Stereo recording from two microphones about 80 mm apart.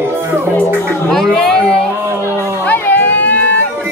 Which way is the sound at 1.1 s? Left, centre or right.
Centre.